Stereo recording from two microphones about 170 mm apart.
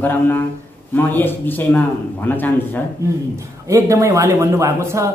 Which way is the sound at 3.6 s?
15° right (ahead or behind).